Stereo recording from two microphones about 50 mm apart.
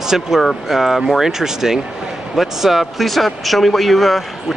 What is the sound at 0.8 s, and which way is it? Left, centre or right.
Speech, centre.